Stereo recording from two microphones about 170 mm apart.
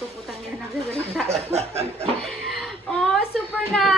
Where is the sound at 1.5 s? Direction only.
35° right (ahead or behind).